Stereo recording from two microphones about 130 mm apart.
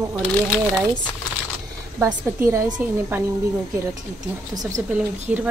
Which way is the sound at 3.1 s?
20° right (ahead or behind).